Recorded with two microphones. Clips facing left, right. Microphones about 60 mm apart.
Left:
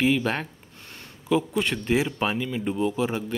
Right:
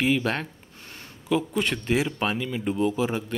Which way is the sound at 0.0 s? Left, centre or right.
Centre.